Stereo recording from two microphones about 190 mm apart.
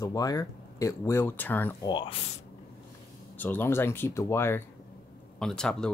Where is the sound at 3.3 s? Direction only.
10° left (ahead or behind).